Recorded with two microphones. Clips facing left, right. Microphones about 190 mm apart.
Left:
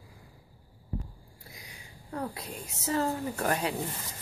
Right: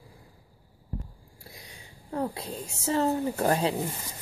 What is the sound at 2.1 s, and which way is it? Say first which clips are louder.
Speech: right 5 dB; 30° right (ahead or behind).